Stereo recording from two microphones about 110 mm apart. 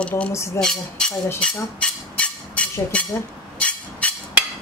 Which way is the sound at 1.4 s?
10° left (ahead or behind).